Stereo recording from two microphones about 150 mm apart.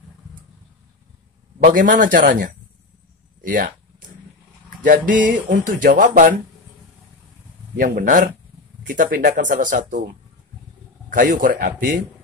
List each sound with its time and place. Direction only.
1.6 s speech: 60° right (ahead or behind)
3.4 s speech: 65° right (ahead or behind)
4.8 s speech: 60° right (ahead or behind)
7.7 s speech: 70° right (ahead or behind)
11.1 s speech: 65° right (ahead or behind)